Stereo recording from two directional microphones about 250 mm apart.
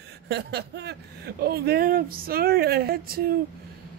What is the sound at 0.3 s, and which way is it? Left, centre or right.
Speech, right.